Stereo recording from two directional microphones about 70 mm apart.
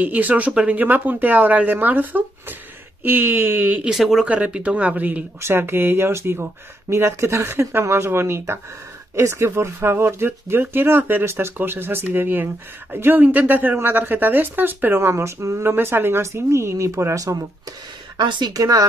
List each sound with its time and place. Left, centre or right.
0.0 s speech: right
3.9 s speech: centre
4.3 s speech: centre
5.4 s speech: right
18.1 s speech: right